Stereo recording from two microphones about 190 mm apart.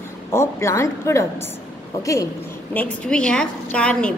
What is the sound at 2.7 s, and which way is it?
A woman's voice, 5° left (ahead or behind).